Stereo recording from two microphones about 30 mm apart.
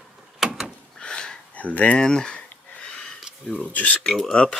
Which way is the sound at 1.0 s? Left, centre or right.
Left.